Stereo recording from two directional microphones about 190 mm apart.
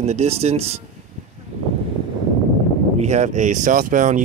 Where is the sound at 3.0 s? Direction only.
35° right (ahead or behind).